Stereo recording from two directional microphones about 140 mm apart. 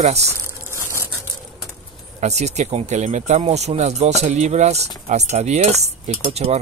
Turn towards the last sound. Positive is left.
turn(degrees=-50)  # may be behind; listen again after turning